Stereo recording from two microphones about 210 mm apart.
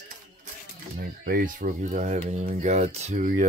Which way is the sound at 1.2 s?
40° right (ahead or behind).